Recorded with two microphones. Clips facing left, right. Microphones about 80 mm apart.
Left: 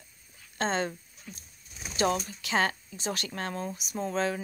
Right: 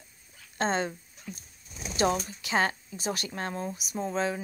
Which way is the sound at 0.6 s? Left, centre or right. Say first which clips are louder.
Right 1 dB; right.